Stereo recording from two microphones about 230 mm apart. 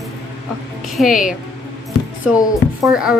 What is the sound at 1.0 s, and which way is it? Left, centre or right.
Speech, left.